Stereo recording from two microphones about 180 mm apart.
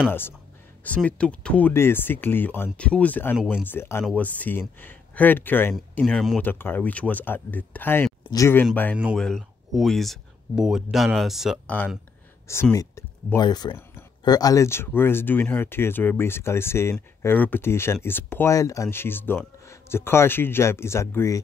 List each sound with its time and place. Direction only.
0.8 s speech: 5° left (ahead or behind)
8.9 s speech: 5° right (ahead or behind)
12.7 s speech: 15° left (ahead or behind)